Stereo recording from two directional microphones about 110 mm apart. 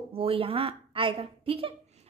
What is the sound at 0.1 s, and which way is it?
A woman's voice, 60° right (ahead or behind).